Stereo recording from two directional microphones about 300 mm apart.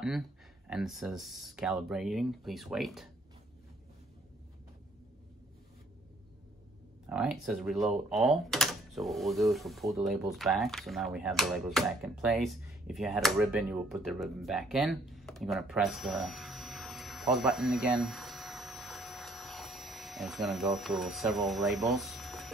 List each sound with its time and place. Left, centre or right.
0.0 s speech: centre
7.1 s speech: centre